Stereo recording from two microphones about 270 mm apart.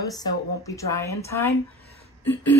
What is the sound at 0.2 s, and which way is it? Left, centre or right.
A woman's voice, centre.